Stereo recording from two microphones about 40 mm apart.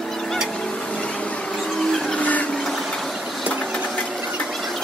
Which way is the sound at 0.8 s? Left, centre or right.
Left.